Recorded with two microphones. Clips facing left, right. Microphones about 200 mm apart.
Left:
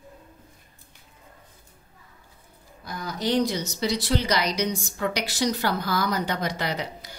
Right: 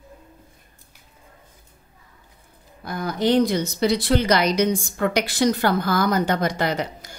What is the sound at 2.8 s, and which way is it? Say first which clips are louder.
Speech: right 6 dB; 55° right (ahead or behind).